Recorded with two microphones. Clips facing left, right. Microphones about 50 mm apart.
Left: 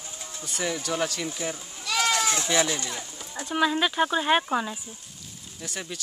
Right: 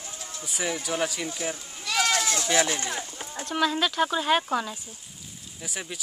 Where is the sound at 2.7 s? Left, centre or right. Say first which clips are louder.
Right 1 dB; right.